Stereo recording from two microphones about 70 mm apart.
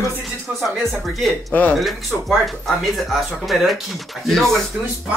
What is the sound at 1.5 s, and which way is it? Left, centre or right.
Speech, left.